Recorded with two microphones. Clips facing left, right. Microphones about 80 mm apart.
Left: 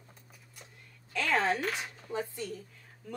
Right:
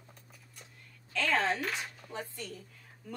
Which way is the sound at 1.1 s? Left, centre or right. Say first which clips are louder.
Left 1 dB; centre.